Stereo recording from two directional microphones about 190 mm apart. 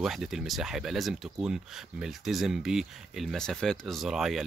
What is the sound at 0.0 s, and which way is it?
Speech, centre (ahead or behind).